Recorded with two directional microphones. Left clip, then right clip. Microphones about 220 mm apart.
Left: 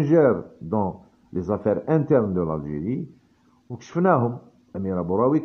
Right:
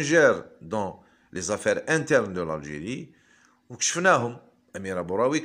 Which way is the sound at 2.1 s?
30° right (ahead or behind).